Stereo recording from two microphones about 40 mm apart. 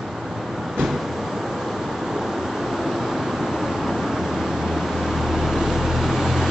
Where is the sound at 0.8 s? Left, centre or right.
Centre.